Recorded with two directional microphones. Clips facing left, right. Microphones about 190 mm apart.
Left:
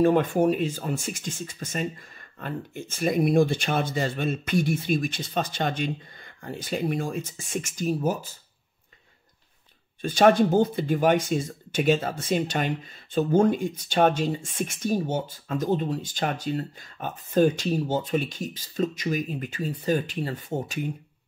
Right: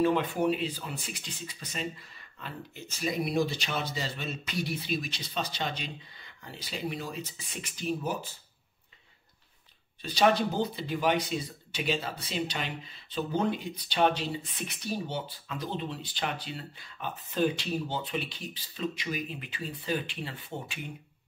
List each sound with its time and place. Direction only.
0.0 s speech: 45° left (ahead or behind)
10.0 s speech: 50° left (ahead or behind)